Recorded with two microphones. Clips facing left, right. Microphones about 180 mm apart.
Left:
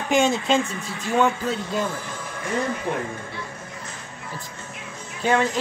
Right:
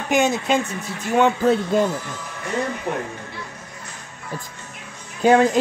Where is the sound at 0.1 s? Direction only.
5° right (ahead or behind).